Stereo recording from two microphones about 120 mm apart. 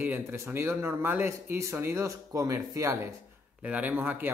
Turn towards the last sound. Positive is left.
turn(degrees=-15)  # may be behind; listen again after turning